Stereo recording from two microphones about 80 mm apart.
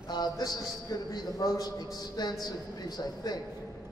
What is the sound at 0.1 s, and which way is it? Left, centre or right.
A man's voice, left.